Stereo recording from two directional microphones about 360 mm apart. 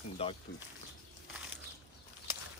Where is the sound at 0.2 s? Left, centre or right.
Centre.